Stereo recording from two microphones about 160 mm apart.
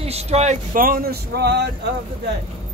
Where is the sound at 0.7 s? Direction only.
65° right (ahead or behind); by 1.6 s 85° right.